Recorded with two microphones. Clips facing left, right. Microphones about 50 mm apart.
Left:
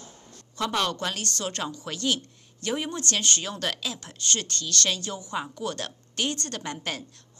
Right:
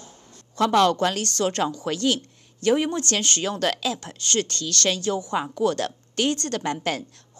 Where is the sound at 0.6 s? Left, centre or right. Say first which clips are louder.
Right 8 dB; right.